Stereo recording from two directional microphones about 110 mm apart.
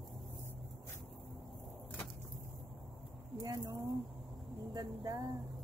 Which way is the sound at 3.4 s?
30° right (ahead or behind).